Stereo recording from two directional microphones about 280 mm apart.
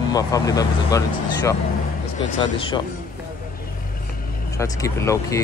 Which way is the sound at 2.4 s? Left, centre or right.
Centre.